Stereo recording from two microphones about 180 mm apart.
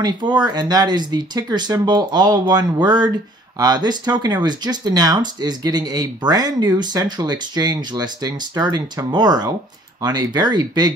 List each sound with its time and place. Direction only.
0.0 s speech: 25° right (ahead or behind)